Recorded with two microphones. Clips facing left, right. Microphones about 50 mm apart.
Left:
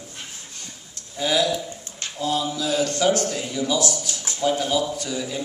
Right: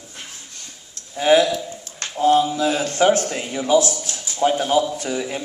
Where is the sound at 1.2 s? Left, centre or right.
Right.